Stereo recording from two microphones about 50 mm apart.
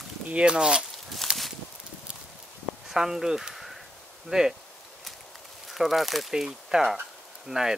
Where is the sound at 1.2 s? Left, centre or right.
Centre.